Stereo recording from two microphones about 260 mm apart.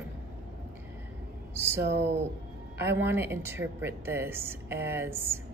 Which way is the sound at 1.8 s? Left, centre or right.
Right.